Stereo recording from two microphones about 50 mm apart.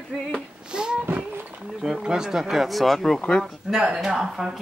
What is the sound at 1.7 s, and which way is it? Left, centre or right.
A woman's voice, centre.